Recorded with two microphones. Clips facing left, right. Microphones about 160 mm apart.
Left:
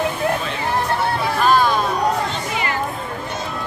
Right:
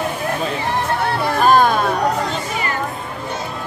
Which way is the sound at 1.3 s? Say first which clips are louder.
Right 3 dB; 45° right (ahead or behind).